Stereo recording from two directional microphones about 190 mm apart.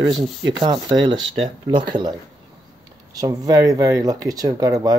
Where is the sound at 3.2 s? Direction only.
20° right (ahead or behind).